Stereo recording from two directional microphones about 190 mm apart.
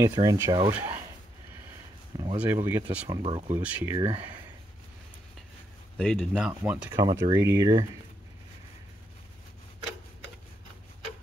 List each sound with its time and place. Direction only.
0.0 s speech: 15° right (ahead or behind)
2.3 s speech: 10° right (ahead or behind)
3.2 s speech: 30° right (ahead or behind)
3.5 s speech: 10° right (ahead or behind)
5.9 s speech: centre (ahead or behind)
7.0 s speech: 20° right (ahead or behind)